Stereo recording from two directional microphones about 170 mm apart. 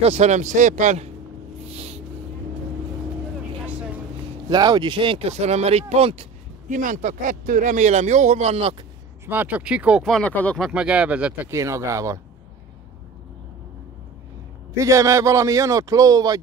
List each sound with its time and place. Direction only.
0.0 s speech: 40° right (ahead or behind)
1.7 s a sound: 35° right (ahead or behind)
4.5 s speech: 25° right (ahead or behind)
6.7 s speech: 50° right (ahead or behind)
9.2 s speech: 10° right (ahead or behind); by 10.7 s 5° left (ahead or behind)
10.7 s speech: 5° right (ahead or behind)
14.8 s a man's voice: 20° right (ahead or behind)